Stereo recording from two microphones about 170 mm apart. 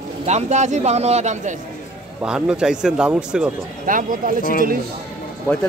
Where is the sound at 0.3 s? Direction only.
40° right (ahead or behind).